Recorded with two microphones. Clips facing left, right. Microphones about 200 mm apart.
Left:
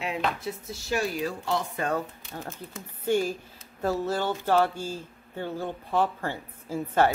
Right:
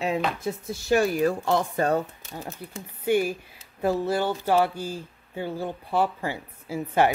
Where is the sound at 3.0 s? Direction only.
10° right (ahead or behind).